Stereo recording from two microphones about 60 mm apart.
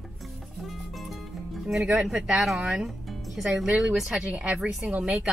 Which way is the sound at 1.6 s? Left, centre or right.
Centre.